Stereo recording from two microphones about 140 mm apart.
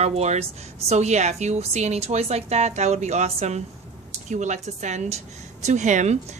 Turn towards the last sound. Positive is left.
turn(degrees=-60)  # may be behind; listen again after turning